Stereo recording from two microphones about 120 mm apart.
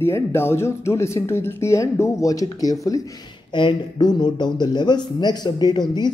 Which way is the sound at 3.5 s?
40° left (ahead or behind).